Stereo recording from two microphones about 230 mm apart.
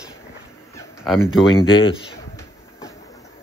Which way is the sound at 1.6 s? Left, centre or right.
Left.